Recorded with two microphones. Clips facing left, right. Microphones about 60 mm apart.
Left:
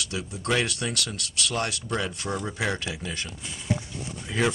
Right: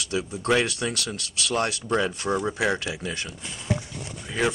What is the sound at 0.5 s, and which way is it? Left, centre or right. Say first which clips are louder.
Speech: right 3 dB; right.